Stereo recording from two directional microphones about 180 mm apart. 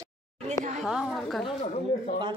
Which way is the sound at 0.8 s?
Centre (ahead or behind).